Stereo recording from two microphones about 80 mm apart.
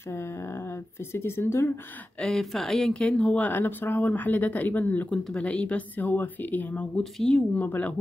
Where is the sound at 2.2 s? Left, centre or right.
Centre.